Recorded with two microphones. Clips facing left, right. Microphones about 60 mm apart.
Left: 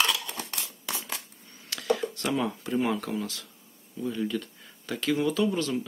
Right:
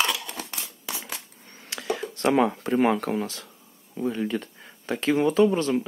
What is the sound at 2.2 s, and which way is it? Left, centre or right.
Speech, right.